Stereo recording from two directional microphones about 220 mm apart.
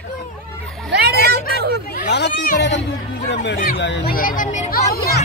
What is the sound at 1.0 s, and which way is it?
Speech, 45° right (ahead or behind).